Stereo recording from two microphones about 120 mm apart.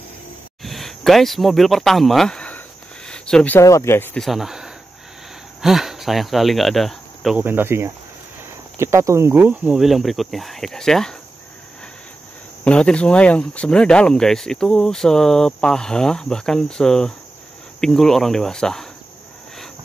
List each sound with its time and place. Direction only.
0.6 s speech: centre (ahead or behind)
3.1 s a sound: 5° left (ahead or behind)
3.5 s speech: 25° left (ahead or behind)
4.1 s speech: centre (ahead or behind)
7.3 s speech: 15° right (ahead or behind)
9.8 s speech: centre (ahead or behind)
12.6 s speech: 10° left (ahead or behind)